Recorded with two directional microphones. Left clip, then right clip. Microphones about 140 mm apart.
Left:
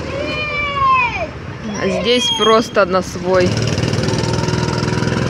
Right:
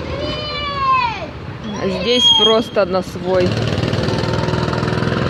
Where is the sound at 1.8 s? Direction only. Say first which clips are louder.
Even; 5° right (ahead or behind).